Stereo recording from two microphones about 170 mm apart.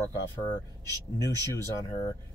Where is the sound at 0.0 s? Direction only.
20° left (ahead or behind).